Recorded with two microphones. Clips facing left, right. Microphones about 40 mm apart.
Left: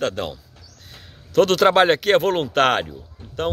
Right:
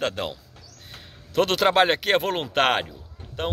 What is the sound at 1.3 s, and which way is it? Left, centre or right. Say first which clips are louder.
Speech: left 6 dB; centre.